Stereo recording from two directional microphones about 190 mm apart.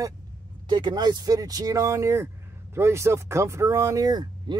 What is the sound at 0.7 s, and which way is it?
Speech, 25° right (ahead or behind).